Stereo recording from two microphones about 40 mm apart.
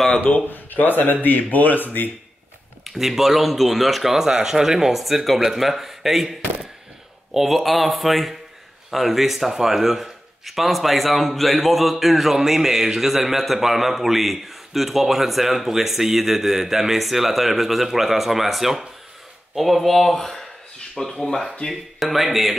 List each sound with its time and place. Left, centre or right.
0.2 s a man's voice: left
2.8 s speech: centre
21.6 s speech: left
22.0 s speech: centre